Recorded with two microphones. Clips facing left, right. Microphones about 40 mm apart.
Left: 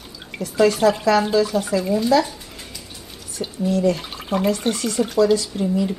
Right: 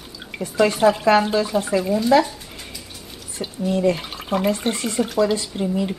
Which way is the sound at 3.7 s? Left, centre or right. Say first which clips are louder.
Even; right.